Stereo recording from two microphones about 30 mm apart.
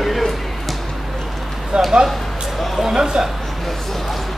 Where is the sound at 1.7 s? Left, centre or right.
Right.